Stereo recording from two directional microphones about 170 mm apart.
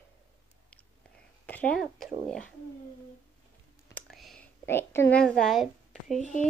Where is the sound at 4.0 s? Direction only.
Centre (ahead or behind).